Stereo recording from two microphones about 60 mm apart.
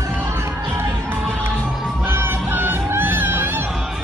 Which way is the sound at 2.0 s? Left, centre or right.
Right.